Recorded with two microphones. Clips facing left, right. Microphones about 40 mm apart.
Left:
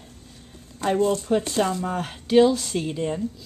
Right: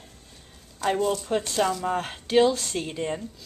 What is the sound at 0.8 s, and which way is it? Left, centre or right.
Speech, left.